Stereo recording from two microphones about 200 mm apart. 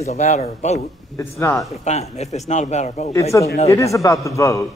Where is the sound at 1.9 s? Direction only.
35° left (ahead or behind).